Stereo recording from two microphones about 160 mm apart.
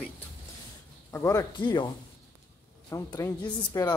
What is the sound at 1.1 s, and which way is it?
Speech, 15° left (ahead or behind).